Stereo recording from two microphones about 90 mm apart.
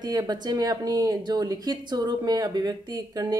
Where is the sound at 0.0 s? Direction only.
50° right (ahead or behind).